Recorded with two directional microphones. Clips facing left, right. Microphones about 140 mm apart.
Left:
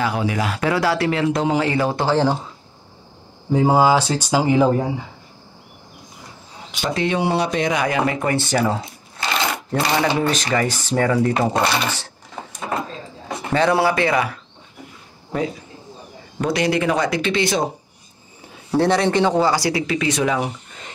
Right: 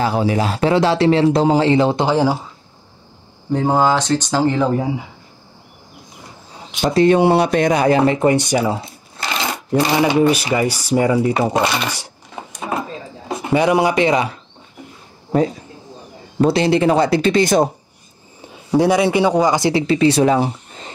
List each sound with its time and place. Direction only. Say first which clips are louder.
0.0 s speech: right 4 dB; 30° right (ahead or behind); by 2.3 s 15° right (ahead or behind)
3.5 s speech: left 1 dB; 5° left (ahead or behind)
6.8 s speech: right 9 dB; 40° right (ahead or behind)
7.2 s speech: right 6 dB; 55° right (ahead or behind)
7.7 s speech: right 6 dB; 35° right (ahead or behind); by 12.1 s 10° right (ahead or behind)
13.5 s speech: right 2 dB; 15° right (ahead or behind)
16.3 s speech: right 5 dB; 30° right (ahead or behind)
18.7 s speech: right 3 dB; 10° right (ahead or behind); by 20.9 s 30° right (ahead or behind)